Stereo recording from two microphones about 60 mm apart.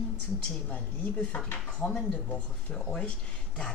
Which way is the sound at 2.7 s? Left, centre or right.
Centre.